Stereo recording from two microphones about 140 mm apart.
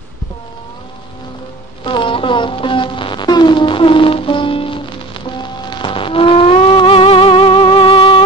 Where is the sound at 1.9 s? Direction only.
35° left (ahead or behind).